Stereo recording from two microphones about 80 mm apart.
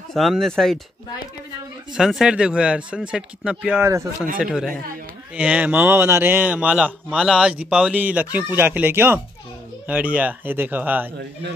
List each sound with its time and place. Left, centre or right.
0.1 s speech: centre
2.0 s speech: centre
3.8 s speech: right
4.4 s speech: centre